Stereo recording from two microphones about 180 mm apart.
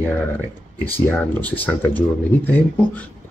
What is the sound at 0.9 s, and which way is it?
Speech, 10° left (ahead or behind).